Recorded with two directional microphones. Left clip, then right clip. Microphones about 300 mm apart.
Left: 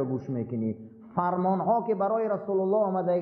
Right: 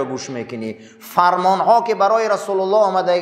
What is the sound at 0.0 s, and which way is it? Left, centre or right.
Speech, centre.